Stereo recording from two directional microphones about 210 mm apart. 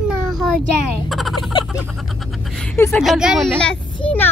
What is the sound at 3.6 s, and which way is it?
Speech, 5° left (ahead or behind).